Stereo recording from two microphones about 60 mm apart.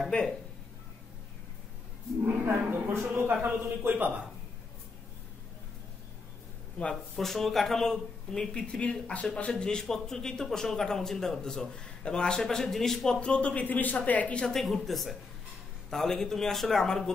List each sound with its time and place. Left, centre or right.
2.2 s a man's voice: right
3.3 s a man's voice: right
6.8 s speech: centre
14.5 s speech: centre